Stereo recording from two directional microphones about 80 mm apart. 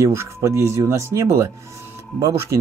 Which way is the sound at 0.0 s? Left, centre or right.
Right.